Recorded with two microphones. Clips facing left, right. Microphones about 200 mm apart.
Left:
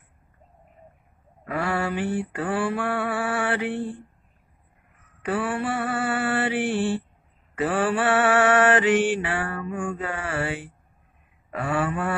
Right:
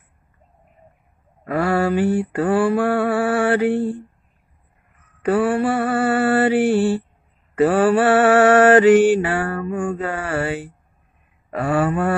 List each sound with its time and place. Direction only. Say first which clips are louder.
1.4 s mantra: right 7 dB; 40° right (ahead or behind)
5.2 s mantra: right 8 dB; 40° right (ahead or behind)